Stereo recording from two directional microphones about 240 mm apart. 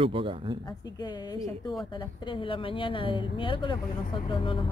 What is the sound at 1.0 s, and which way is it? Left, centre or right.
A woman's voice, centre.